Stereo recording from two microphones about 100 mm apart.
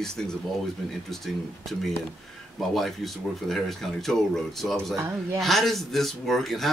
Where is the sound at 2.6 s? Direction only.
Centre (ahead or behind).